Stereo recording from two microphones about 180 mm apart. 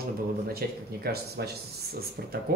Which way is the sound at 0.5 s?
60° right (ahead or behind).